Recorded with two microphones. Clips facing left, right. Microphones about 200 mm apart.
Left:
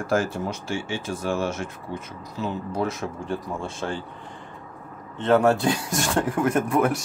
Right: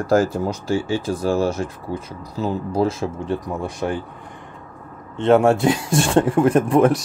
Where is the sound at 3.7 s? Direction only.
15° right (ahead or behind).